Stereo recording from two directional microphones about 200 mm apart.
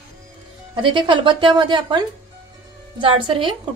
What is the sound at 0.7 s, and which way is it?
Speech, 25° right (ahead or behind).